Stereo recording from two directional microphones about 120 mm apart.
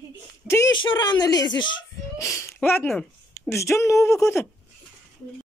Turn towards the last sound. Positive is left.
turn(degrees=25)  # may be behind; listen again after turning